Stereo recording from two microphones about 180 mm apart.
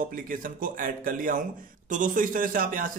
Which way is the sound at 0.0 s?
50° right (ahead or behind).